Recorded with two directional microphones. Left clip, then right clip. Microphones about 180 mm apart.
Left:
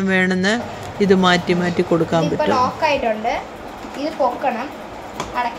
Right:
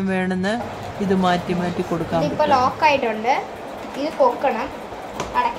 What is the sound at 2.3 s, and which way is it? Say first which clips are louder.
A woman's voice: right 4 dB; 35° right (ahead or behind).